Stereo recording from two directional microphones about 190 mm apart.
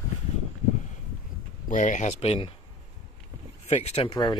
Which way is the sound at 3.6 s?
35° left (ahead or behind).